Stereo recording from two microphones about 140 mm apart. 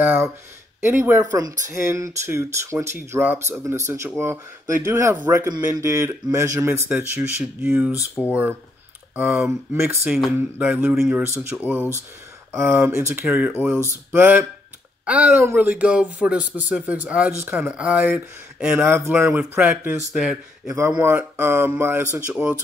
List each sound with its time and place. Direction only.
0.0 s speech: 15° right (ahead or behind)
9.4 s speech: 15° right (ahead or behind)